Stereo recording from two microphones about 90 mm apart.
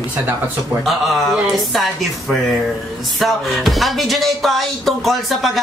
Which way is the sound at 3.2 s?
Centre (ahead or behind).